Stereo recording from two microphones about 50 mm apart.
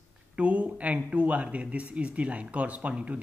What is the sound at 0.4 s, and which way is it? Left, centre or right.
Speech, right.